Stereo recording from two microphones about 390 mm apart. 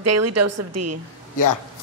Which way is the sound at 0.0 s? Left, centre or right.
Right.